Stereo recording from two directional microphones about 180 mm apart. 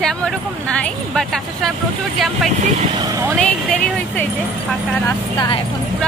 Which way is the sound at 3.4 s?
5° left (ahead or behind).